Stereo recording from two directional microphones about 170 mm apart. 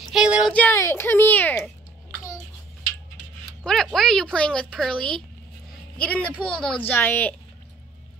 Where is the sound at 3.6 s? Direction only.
5° left (ahead or behind).